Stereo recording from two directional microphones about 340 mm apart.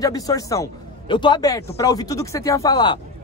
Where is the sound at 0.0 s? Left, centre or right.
Centre.